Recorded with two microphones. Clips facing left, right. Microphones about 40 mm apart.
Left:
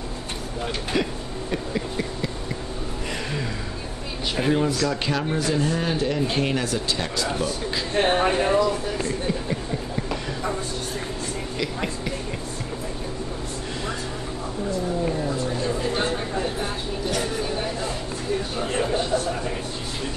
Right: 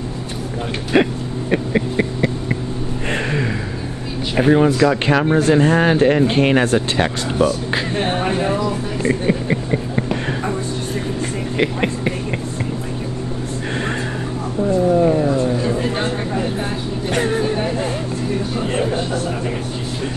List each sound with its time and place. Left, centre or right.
0.9 s speech: right
4.4 s speech: right
8.0 s speech: centre
9.0 s speech: right
11.5 s speech: right
15.0 s speech: right
15.6 s speech: right
17.1 s vehicle: right